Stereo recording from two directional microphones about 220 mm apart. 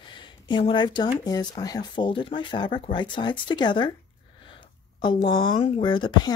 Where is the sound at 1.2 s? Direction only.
15° left (ahead or behind).